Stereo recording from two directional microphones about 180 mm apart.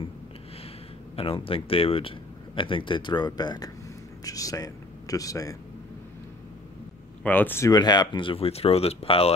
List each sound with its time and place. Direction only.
1.1 s speech: 30° left (ahead or behind)
7.2 s speech: 10° left (ahead or behind); by 9.3 s 35° left (ahead or behind)